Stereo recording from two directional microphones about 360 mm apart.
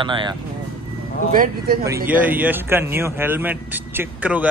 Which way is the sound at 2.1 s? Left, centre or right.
Centre.